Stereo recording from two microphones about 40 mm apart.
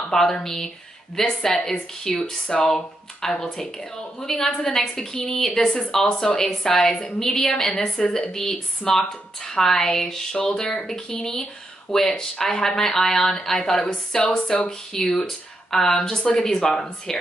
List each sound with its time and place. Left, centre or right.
0.1 s speech: centre
4.6 s speech: left
13.7 s speech: left